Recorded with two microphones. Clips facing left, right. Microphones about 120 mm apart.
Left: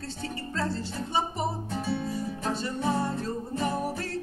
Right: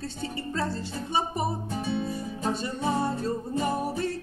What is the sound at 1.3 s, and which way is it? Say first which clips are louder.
Music: right 1 dB; 10° right (ahead or behind).